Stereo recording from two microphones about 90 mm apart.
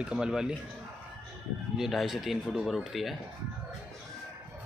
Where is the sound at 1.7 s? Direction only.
5° right (ahead or behind).